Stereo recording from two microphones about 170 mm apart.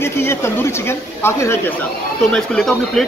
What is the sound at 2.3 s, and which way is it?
Speech, centre (ahead or behind).